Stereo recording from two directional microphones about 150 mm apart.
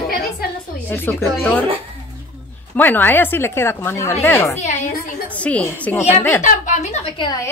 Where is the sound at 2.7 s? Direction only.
10° left (ahead or behind).